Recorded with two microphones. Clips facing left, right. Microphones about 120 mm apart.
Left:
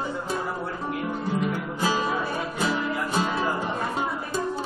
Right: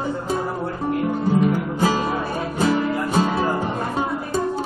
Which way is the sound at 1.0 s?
40° right (ahead or behind).